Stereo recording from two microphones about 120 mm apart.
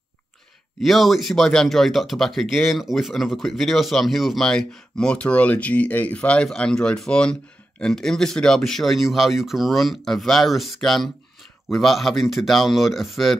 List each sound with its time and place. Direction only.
0.7 s speech: centre (ahead or behind)